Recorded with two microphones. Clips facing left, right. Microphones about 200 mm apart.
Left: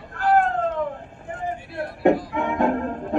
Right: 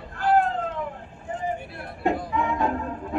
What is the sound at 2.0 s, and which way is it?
Music, 60° left (ahead or behind).